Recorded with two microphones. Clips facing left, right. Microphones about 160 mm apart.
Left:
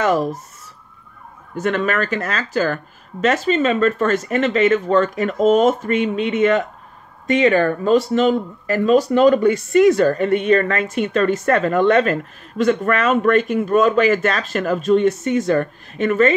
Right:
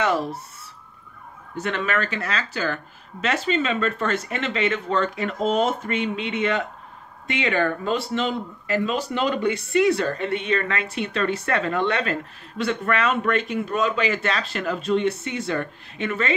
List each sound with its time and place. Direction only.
0.0 s speech: 45° left (ahead or behind)
1.6 s speech: 45° left (ahead or behind)